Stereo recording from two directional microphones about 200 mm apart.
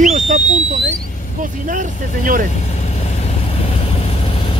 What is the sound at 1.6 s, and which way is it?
Speech, 40° right (ahead or behind).